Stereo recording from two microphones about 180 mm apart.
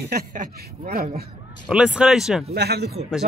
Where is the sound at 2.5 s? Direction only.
65° right (ahead or behind).